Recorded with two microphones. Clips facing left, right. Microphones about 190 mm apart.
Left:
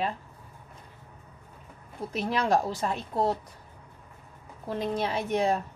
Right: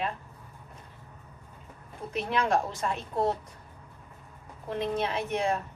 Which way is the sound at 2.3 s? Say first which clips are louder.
Left 1 dB; 35° left (ahead or behind).